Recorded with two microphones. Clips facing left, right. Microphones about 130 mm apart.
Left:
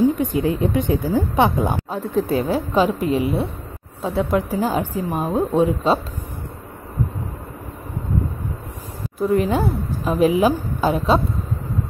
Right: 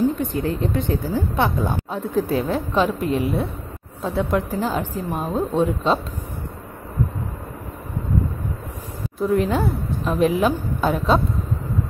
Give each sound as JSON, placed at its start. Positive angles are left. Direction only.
{"t": 0.2, "sound": "a woman's voice", "side_deg": 15}
{"t": 1.9, "sound": "a woman's voice", "side_deg": 0}
{"t": 9.2, "sound": "a woman's voice", "side_deg": 0}